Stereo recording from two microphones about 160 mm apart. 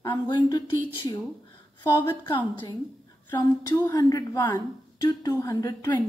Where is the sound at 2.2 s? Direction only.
25° left (ahead or behind).